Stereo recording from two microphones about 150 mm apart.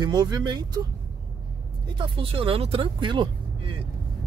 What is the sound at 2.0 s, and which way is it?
Speech, 35° right (ahead or behind).